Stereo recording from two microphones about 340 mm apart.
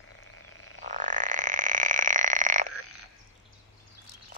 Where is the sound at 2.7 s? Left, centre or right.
Left.